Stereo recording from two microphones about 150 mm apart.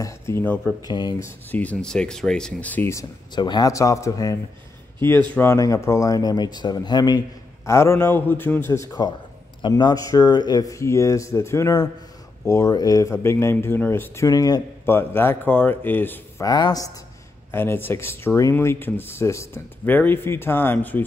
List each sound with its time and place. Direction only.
0.0 s speech: 15° left (ahead or behind)
0.8 s speech: 25° left (ahead or behind)
1.5 s speech: 10° left (ahead or behind)
3.3 s speech: 30° left (ahead or behind); by 16.4 s 15° left (ahead or behind)
16.4 s speech: 25° left (ahead or behind)
17.5 s speech: 15° left (ahead or behind)